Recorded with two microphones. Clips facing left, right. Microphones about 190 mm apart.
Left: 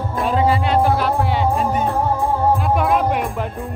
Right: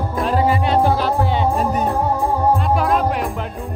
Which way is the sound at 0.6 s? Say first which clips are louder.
Even; 30° right (ahead or behind).